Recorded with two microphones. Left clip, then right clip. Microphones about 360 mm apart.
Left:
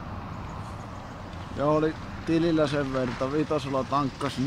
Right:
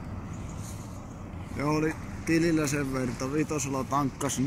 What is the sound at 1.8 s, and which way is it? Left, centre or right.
Speech, left.